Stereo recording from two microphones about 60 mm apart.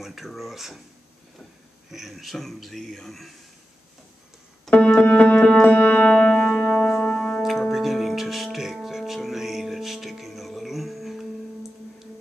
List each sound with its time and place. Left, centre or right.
0.0 s a man's voice: centre
1.9 s a man's voice: centre
4.6 s keyboard: centre
5.0 s music: left
5.3 s music: centre
5.6 s music: left; by 6.5 s centre
6.6 s music: left
7.1 s music: centre